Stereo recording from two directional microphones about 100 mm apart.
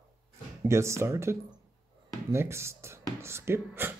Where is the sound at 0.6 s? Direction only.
30° right (ahead or behind).